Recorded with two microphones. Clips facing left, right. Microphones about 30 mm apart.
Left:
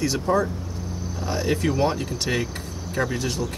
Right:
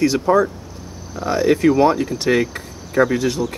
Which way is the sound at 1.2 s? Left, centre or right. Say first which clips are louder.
Right 9 dB; right.